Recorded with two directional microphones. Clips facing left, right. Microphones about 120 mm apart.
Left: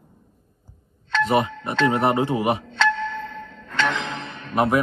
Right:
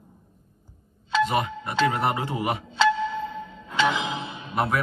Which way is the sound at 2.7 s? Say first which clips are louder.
Right 1 dB; 5° right (ahead or behind).